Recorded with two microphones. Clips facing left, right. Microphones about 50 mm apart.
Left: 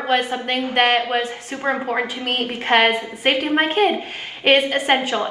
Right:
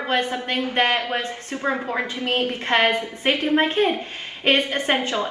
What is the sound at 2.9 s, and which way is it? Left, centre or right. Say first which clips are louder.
A woman's voice: left 2 dB; left.